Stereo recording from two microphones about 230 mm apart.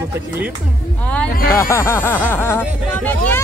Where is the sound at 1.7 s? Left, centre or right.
Centre.